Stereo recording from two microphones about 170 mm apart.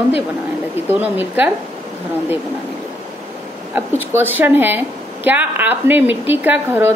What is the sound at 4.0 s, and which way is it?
A woman's voice, 10° right (ahead or behind).